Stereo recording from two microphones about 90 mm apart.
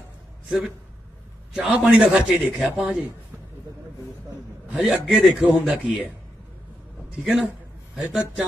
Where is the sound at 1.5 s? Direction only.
10° right (ahead or behind).